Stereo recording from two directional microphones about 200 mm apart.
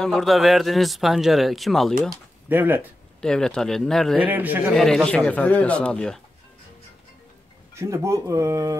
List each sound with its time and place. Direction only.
0.0 s a man's voice: centre (ahead or behind)
2.5 s speech: 10° right (ahead or behind)
3.2 s a man's voice: 5° left (ahead or behind)
7.7 s speech: 15° right (ahead or behind)